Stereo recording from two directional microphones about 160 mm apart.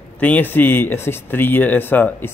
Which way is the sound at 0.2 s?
10° left (ahead or behind).